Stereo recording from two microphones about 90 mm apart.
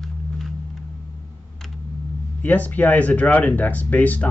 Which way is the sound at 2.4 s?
20° left (ahead or behind).